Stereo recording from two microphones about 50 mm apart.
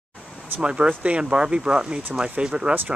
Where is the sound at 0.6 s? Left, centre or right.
Right.